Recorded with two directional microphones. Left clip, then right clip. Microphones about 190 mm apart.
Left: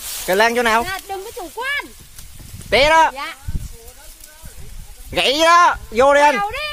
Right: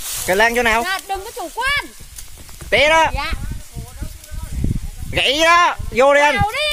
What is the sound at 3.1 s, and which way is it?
Speech, 60° right (ahead or behind).